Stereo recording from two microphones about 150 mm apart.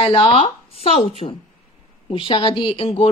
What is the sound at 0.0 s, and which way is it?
A woman's voice, 35° left (ahead or behind).